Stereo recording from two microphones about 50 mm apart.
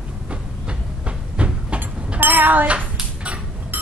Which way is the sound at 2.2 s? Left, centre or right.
Right.